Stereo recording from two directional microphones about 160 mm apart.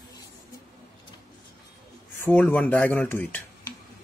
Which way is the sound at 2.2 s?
10° left (ahead or behind).